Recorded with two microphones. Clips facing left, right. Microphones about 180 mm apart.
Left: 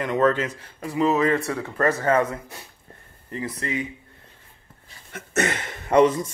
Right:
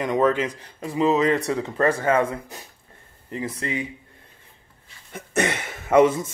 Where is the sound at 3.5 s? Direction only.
25° right (ahead or behind).